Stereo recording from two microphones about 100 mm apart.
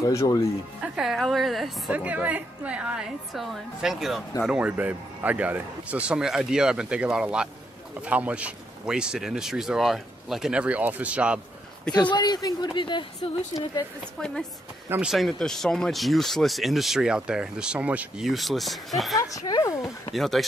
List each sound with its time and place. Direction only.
0.0 s speech: 30° left (ahead or behind)
0.7 s speech: 5° right (ahead or behind)
1.9 s speech: 15° right (ahead or behind)
4.5 s speech: 15° right (ahead or behind)
12.1 s speech: 45° left (ahead or behind)
15.0 s speech: centre (ahead or behind)
18.2 s speech: centre (ahead or behind)
19.1 s speech: 35° left (ahead or behind)
20.1 s speech: centre (ahead or behind)